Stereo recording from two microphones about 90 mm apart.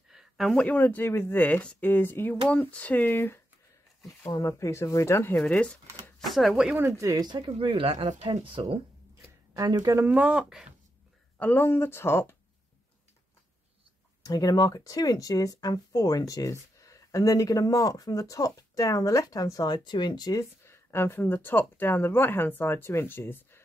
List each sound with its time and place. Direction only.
0.1 s a sound: 5° right (ahead or behind)
0.6 s speech: 20° left (ahead or behind)
4.3 s speech: 35° left (ahead or behind); by 5.8 s 15° left (ahead or behind)
6.1 s speech: centre (ahead or behind)
7.2 s speech: 55° right (ahead or behind)
7.5 s speech: 85° right; by 8.7 s 70° right (ahead or behind)
9.5 s speech: 45° right (ahead or behind)
10.0 s speech: 15° right (ahead or behind)
11.3 s speech: 20° left (ahead or behind)
14.2 s speech: 45° left (ahead or behind)
20.6 s speech: 30° left (ahead or behind)